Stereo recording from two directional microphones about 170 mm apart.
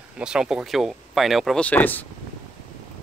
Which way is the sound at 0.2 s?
5° right (ahead or behind).